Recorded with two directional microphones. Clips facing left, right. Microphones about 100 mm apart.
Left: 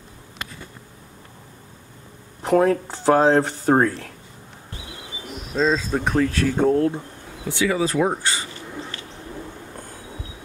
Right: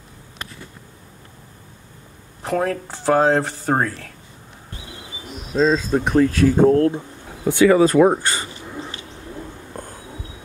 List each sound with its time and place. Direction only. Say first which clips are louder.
2.4 s speech: left 4 dB; 5° left (ahead or behind)
5.5 s speech: right 3 dB; 5° right (ahead or behind)
7.4 s speech: right 8 dB; 50° right (ahead or behind)